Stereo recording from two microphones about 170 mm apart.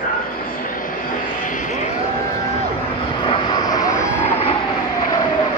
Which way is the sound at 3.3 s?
25° left (ahead or behind).